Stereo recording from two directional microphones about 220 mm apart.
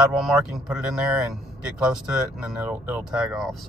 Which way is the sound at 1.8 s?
5° right (ahead or behind).